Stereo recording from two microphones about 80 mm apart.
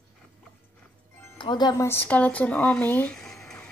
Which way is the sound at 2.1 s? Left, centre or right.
Centre.